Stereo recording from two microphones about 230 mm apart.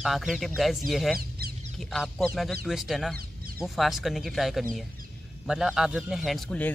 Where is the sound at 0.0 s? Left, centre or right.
Centre.